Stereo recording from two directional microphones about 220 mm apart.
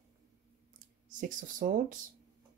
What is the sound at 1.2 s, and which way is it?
Speech, 35° right (ahead or behind).